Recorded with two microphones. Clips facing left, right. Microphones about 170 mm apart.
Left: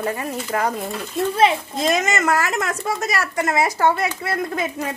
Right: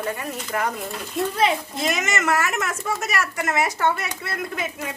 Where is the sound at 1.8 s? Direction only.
35° left (ahead or behind).